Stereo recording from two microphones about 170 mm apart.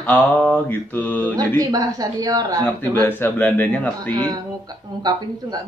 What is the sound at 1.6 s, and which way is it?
Speech, 20° right (ahead or behind).